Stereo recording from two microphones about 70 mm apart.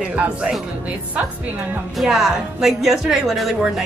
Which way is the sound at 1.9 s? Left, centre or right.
Centre.